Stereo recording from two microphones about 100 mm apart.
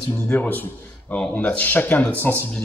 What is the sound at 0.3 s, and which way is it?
A man's voice, 20° left (ahead or behind).